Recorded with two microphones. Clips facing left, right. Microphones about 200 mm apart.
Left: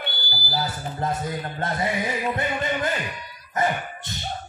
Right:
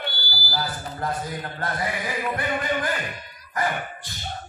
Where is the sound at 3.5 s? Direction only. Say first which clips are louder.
Left 2 dB; 25° left (ahead or behind).